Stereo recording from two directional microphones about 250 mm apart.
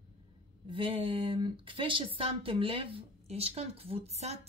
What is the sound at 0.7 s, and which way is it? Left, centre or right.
Speech, right.